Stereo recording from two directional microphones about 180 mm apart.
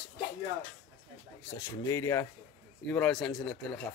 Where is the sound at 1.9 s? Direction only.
15° left (ahead or behind).